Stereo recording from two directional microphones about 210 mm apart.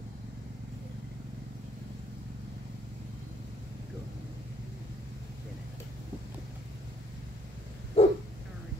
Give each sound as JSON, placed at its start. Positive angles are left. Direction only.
{"t": 8.0, "sound": "dog", "side_deg": 30}